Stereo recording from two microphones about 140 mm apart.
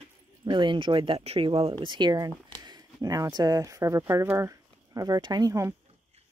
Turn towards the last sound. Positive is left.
turn(degrees=-25)  # may be behind; listen again after turning